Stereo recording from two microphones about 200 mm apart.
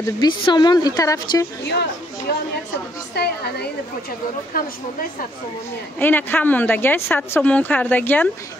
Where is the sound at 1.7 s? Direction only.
55° left (ahead or behind).